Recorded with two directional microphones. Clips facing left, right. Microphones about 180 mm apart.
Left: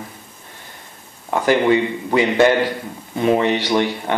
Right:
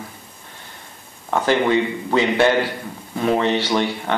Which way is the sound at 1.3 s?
15° left (ahead or behind).